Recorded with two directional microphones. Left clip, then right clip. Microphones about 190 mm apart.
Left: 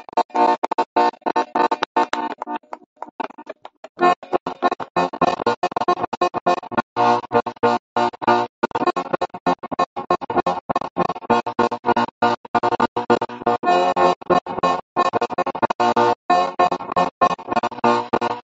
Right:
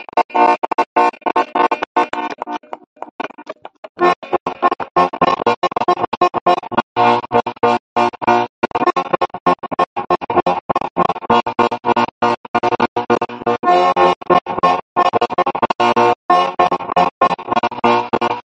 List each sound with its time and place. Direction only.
0.3 s music: 20° right (ahead or behind)